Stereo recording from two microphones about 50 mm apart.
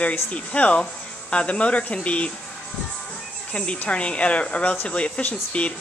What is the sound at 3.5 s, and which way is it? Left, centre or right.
Speech, left.